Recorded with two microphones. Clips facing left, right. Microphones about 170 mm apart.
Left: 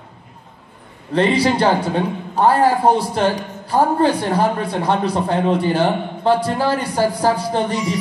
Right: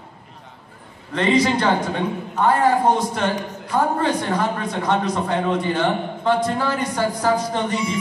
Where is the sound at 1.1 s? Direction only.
30° left (ahead or behind).